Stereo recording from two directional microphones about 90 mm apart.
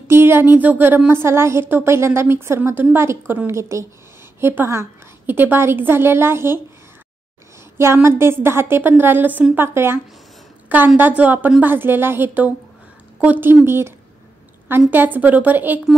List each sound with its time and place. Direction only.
0.1 s a woman's voice: 25° right (ahead or behind)
7.7 s a woman's voice: 30° right (ahead or behind)
11.0 s a woman's voice: 20° right (ahead or behind)